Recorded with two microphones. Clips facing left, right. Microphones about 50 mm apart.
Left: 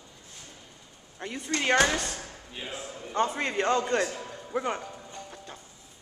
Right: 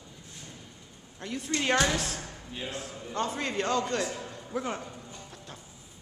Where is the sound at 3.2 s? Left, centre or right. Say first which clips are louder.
Left 4 dB; centre.